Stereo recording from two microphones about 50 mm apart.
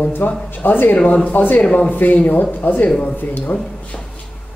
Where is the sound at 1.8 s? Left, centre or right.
Left.